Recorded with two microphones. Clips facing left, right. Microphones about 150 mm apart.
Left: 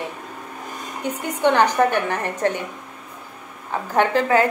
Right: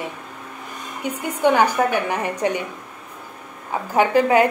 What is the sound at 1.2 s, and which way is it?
A woman's voice, 10° right (ahead or behind).